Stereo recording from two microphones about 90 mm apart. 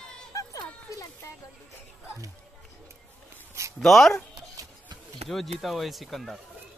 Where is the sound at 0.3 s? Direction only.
40° left (ahead or behind).